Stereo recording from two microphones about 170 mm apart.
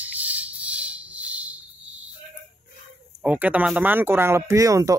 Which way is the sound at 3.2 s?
10° right (ahead or behind).